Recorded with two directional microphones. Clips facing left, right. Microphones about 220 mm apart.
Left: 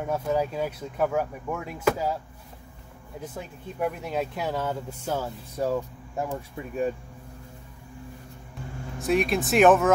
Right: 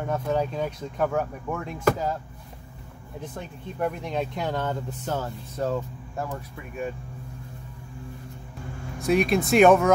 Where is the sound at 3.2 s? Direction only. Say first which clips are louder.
Even; 5° left (ahead or behind).